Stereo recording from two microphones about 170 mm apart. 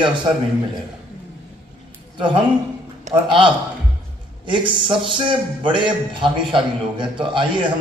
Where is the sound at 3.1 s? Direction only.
45° right (ahead or behind).